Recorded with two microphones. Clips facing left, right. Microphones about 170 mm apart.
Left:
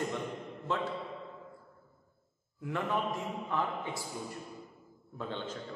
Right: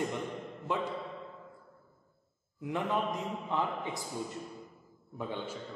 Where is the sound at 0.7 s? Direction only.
15° right (ahead or behind).